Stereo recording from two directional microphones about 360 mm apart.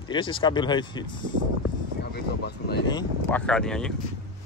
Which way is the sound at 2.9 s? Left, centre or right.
Centre.